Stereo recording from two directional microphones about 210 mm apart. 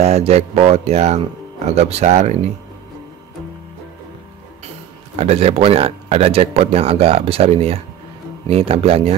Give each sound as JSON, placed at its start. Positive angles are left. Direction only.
{"t": 0.0, "sound": "speech", "side_deg": -30}
{"t": 5.1, "sound": "speech", "side_deg": -30}